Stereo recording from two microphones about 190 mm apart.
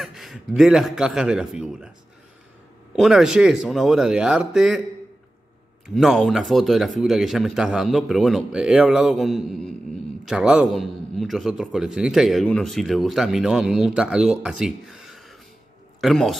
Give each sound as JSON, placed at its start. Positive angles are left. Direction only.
{"t": 0.0, "sound": "a man's voice", "side_deg": 0}
{"t": 3.0, "sound": "a man's voice", "side_deg": 0}
{"t": 5.9, "sound": "a man's voice", "side_deg": 0}